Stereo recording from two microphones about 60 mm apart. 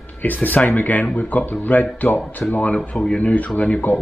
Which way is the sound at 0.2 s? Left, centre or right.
Left.